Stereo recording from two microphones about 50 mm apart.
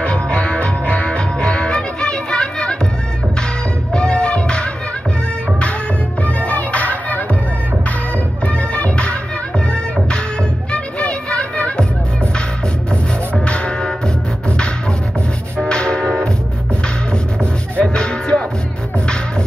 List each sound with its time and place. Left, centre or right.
0.0 s music: left
3.9 s music: centre
6.2 s music: left
8.5 s music: left
10.7 s music: left
13.5 s music: left
15.5 s train: centre
17.7 s music: centre